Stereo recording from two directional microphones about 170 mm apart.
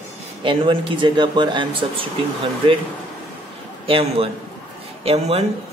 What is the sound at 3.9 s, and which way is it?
Speech, 35° right (ahead or behind).